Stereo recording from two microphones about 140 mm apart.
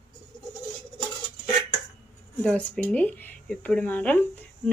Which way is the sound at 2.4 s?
5° left (ahead or behind).